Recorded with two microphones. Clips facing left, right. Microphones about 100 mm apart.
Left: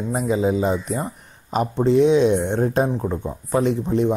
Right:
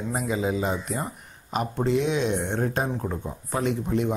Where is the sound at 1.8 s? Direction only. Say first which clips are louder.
Left 9 dB; 35° left (ahead or behind).